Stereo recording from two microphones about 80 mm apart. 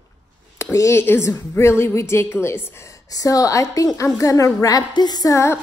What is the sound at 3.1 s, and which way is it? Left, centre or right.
A woman's voice, left.